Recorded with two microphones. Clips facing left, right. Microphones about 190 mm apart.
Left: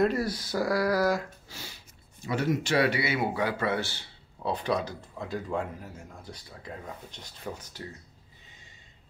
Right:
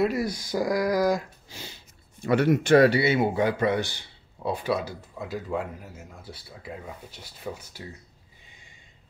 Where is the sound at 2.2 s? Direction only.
65° right (ahead or behind).